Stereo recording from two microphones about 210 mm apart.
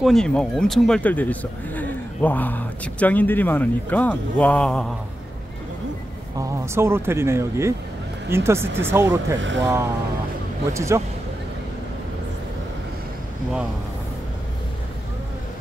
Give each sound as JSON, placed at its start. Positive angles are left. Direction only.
{"t": 0.0, "sound": "a man's voice", "side_deg": 0}
{"t": 6.3, "sound": "speech", "side_deg": -15}